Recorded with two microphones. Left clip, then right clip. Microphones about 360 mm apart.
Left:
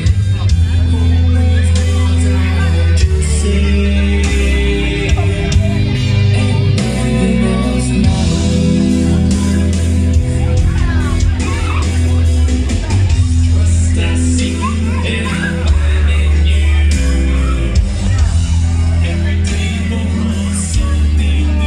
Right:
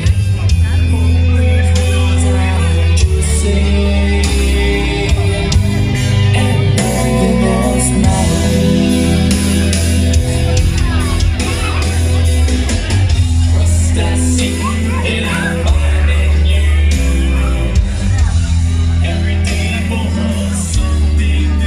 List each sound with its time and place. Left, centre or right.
3.4 s music: centre